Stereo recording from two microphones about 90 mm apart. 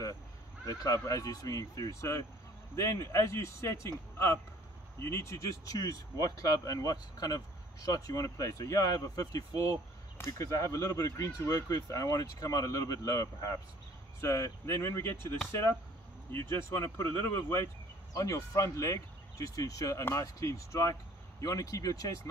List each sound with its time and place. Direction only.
0.7 s speech: 40° left (ahead or behind)
5.0 s speech: 35° left (ahead or behind)
18.1 s speech: 40° left (ahead or behind)